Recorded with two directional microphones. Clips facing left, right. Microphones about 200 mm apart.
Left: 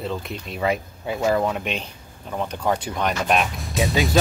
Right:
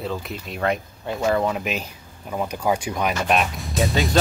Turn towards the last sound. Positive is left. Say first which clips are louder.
# even
turn(degrees=0)  # may be behind; listen again after turning